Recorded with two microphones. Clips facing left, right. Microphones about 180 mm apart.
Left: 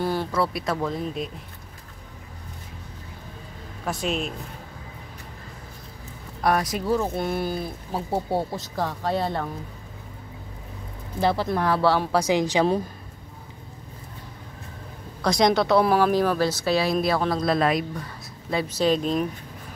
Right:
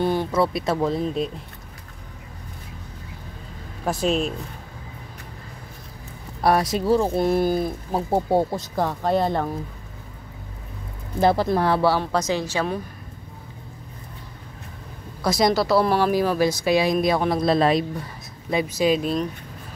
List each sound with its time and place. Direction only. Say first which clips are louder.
0.0 s speech: right 4 dB; 20° right (ahead or behind)
3.8 s speech: right 5 dB; 35° right (ahead or behind)
6.4 s speech: right 3 dB; 30° right (ahead or behind); by 9.5 s 45° right (ahead or behind)
11.1 s speech: right 4 dB; 45° right (ahead or behind)
11.5 s speech: right 3 dB; 30° right (ahead or behind)
12.0 s a woman's voice: left 2 dB; 10° left (ahead or behind)
15.2 s speech: even; 5° right (ahead or behind)
16.0 s speech: right 1 dB; 10° right (ahead or behind); by 17.8 s 25° right (ahead or behind)
18.5 s speech: right 2 dB; 15° right (ahead or behind)